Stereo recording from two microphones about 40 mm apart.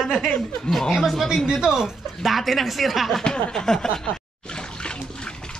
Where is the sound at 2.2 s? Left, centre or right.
Centre.